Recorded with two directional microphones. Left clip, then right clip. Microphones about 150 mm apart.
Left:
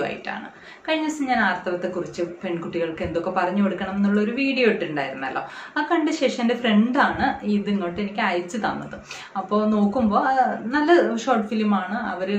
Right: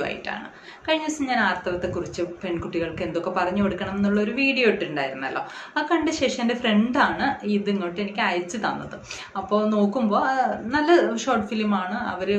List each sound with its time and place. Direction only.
0.8 s a woman's voice: 10° right (ahead or behind)